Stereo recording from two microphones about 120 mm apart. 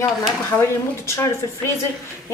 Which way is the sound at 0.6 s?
25° left (ahead or behind).